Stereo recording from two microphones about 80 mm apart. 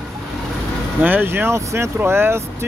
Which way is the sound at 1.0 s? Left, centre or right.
Right.